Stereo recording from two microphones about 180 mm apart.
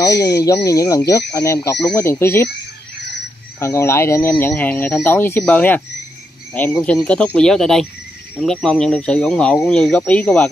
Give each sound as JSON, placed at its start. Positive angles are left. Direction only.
{"t": 0.2, "sound": "speech", "side_deg": 20}
{"t": 3.5, "sound": "speech", "side_deg": 15}